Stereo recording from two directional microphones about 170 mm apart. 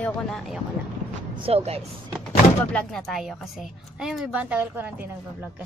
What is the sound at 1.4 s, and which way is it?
Speech, 35° right (ahead or behind).